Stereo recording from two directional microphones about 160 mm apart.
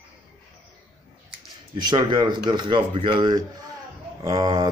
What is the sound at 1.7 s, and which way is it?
Speech, 30° right (ahead or behind).